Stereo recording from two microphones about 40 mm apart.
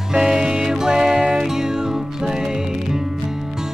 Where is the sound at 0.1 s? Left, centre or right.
Centre.